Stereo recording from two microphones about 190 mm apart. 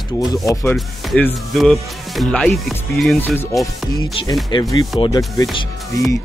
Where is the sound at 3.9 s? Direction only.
20° left (ahead or behind).